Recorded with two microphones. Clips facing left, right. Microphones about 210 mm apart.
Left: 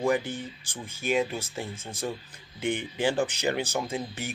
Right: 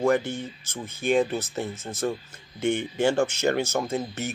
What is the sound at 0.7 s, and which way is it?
Speech, 10° left (ahead or behind).